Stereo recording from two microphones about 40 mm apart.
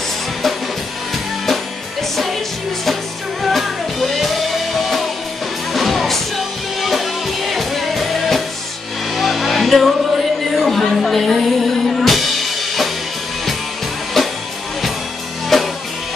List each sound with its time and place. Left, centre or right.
3.4 s music: centre
14.2 s music: centre
15.5 s music: centre